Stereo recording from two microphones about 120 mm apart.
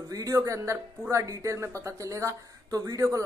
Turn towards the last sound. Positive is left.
turn(degrees=-25)  # may be behind; listen again after turning